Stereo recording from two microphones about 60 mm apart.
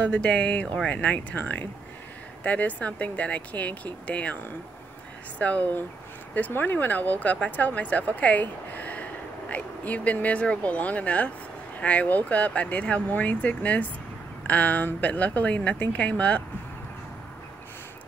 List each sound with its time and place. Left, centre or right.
0.0 s speech: centre
5.4 s speech: left